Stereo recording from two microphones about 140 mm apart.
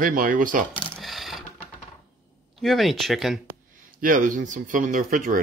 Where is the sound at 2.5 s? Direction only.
Centre (ahead or behind).